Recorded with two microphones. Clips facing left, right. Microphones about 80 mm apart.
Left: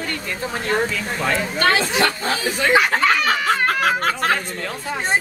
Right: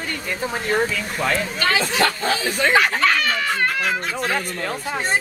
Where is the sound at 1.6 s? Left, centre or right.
Left.